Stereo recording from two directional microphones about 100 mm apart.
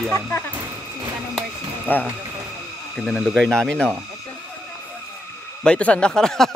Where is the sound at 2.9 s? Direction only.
Centre (ahead or behind).